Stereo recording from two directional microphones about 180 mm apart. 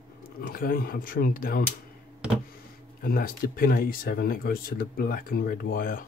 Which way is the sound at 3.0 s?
55° left (ahead or behind).